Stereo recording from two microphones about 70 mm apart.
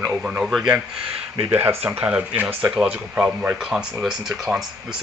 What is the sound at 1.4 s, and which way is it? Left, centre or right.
Speech, right.